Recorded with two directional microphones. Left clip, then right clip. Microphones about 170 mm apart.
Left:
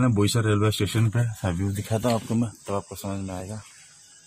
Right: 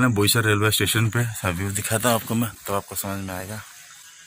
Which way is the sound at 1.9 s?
5° right (ahead or behind).